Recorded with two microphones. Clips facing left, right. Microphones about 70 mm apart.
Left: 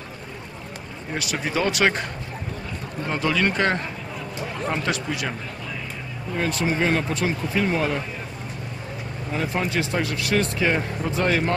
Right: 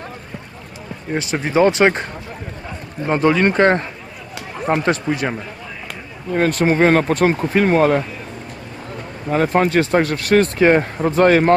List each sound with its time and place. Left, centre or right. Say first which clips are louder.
1.1 s speech: right 8 dB; right
3.1 s speech: right 8 dB; right
4.8 s speech: right 7 dB; right
6.3 s speech: right 8 dB; right
9.3 s speech: right 10 dB; right